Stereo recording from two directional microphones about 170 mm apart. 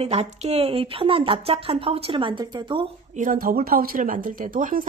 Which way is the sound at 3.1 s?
50° right (ahead or behind).